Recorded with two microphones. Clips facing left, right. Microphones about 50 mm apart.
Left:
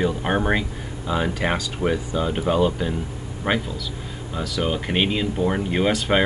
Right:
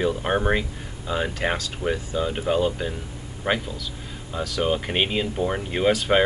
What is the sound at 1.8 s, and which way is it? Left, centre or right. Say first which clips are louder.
Speech: left 3 dB; left.